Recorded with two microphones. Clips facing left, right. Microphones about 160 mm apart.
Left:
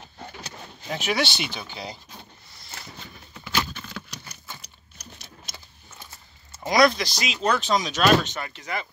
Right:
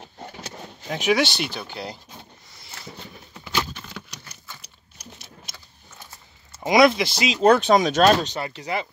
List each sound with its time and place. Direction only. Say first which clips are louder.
0.8 s speech: right 5 dB; centre (ahead or behind)
6.6 s speech: right 3 dB; 20° right (ahead or behind)
7.3 s speech: right 7 dB; 50° right (ahead or behind)
8.1 s speech: right 1 dB; 35° right (ahead or behind)